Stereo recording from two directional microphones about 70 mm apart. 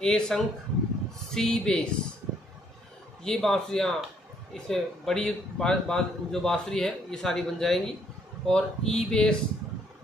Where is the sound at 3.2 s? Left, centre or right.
Centre.